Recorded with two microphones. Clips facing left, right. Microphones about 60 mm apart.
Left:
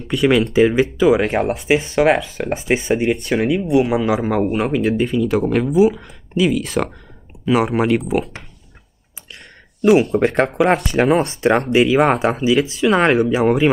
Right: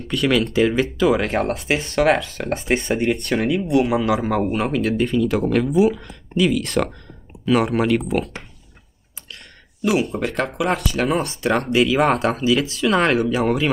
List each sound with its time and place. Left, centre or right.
0.1 s speech: centre
10.2 s speech: left
11.9 s speech: centre